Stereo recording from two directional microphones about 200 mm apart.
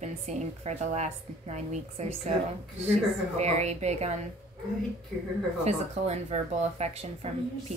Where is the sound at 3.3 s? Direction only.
35° right (ahead or behind).